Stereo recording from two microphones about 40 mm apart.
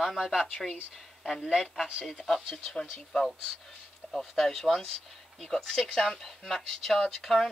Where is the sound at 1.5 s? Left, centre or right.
Centre.